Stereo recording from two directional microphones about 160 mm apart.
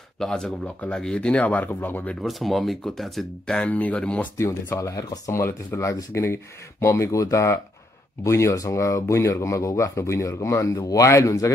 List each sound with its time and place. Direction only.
0.2 s speech: 5° left (ahead or behind)
2.2 s speech: centre (ahead or behind)
4.4 s speech: 20° left (ahead or behind)